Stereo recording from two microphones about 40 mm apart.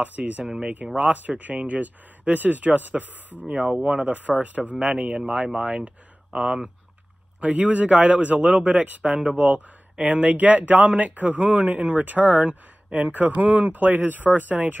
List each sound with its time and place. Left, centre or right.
0.0 s speech: right
3.8 s speech: right
9.0 s speech: right